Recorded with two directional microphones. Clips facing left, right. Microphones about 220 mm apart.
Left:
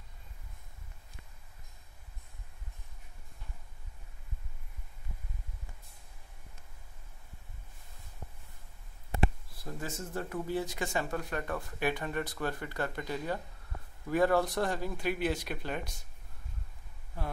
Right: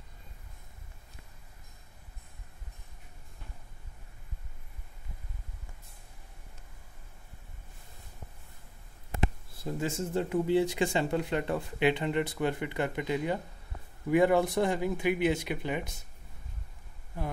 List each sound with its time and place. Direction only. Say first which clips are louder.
9.2 s speech: even; 25° right (ahead or behind)